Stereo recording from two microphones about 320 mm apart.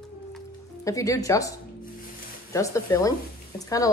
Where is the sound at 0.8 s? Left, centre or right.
Centre.